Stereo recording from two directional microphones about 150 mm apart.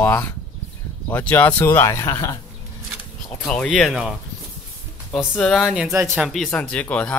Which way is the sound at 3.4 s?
5° left (ahead or behind).